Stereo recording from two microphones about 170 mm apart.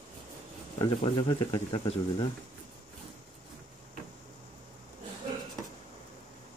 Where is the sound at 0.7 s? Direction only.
25° left (ahead or behind).